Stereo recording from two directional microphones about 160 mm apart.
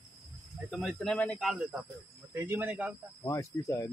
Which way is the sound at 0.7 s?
Centre (ahead or behind).